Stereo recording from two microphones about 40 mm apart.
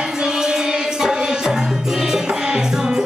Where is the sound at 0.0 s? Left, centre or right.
Centre.